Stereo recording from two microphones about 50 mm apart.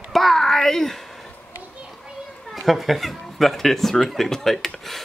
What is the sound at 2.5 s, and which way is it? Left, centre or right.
Speech, centre.